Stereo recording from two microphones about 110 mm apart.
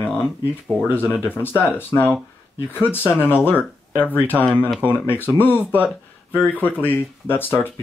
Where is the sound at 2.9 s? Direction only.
20° left (ahead or behind).